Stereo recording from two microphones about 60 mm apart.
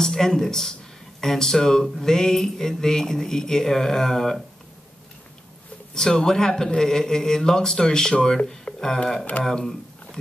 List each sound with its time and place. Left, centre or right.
0.0 s speech: centre
5.9 s speech: centre